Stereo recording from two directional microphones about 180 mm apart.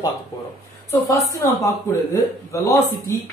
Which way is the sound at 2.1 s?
15° left (ahead or behind).